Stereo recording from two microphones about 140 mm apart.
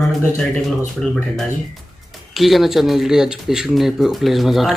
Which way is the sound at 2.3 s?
Centre (ahead or behind).